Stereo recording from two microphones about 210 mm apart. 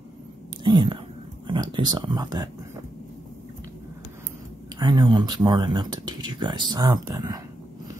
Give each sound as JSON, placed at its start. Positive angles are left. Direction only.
{"t": 0.7, "sound": "speech", "side_deg": -20}
{"t": 4.7, "sound": "speech", "side_deg": -20}